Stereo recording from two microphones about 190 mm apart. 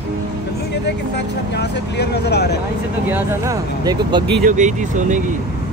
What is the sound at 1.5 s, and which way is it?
Speech, 60° left (ahead or behind).